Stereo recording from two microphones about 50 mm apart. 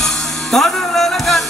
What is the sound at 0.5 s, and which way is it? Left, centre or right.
Music, centre.